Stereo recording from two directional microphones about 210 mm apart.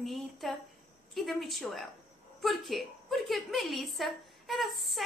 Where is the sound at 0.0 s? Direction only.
Centre (ahead or behind).